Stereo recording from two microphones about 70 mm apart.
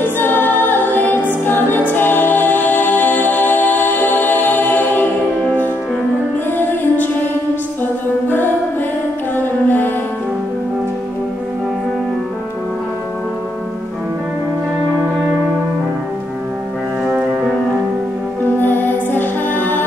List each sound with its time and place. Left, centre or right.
0.0 s music: left
17.0 s music: centre
18.6 s music: left